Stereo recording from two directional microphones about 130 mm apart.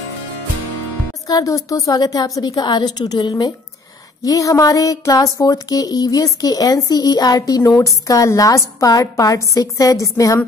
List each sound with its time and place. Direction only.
1.2 s speech: 25° left (ahead or behind)